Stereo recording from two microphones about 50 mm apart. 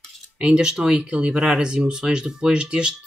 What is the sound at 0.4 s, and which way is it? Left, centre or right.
Speech, centre.